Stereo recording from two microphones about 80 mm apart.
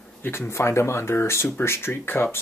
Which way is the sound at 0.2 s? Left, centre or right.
Left.